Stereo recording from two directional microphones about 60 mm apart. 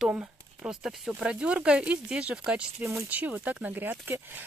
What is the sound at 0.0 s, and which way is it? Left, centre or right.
Speech, centre.